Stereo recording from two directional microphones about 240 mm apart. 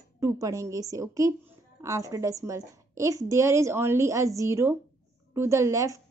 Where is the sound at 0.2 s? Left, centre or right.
Centre.